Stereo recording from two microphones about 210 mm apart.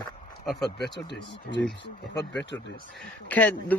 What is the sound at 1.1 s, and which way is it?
Speech, 55° left (ahead or behind).